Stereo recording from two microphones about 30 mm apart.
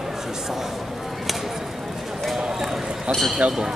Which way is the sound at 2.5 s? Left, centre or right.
Centre.